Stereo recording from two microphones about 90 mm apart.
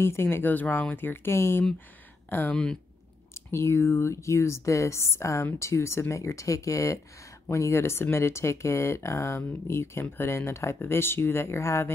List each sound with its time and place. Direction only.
0.0 s speech: 25° left (ahead or behind)
2.5 s speech: 10° left (ahead or behind)
3.3 s speech: 30° left (ahead or behind)